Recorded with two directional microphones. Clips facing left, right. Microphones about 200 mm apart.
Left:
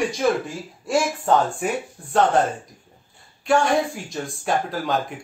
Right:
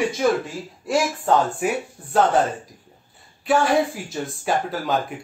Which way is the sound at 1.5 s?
5° right (ahead or behind).